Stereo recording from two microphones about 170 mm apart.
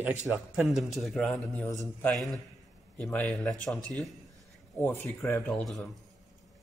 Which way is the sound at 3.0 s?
5° left (ahead or behind).